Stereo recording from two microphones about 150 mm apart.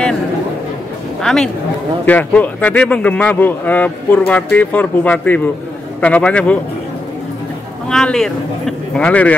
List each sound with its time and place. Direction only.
1.2 s a man's voice: 5° left (ahead or behind)
7.9 s speech: 5° left (ahead or behind)